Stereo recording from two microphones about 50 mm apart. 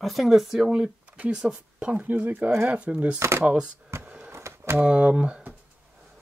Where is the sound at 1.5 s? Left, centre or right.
Right.